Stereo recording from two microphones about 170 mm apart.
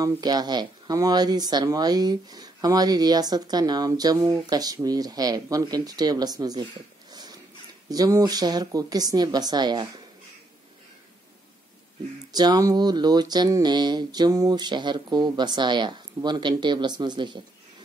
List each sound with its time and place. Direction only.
0.0 s speech: 25° right (ahead or behind)
7.1 s a sound: 25° right (ahead or behind)
7.9 s speech: 20° right (ahead or behind)
12.3 s speech: 25° right (ahead or behind)